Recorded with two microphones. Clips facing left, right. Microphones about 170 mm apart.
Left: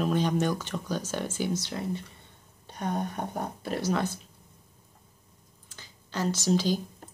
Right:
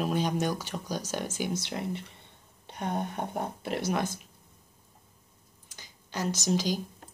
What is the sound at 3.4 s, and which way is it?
Speech, 20° right (ahead or behind).